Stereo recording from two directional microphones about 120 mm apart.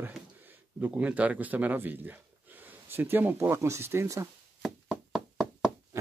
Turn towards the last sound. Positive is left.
turn(degrees=0)  # may be behind; listen again after turning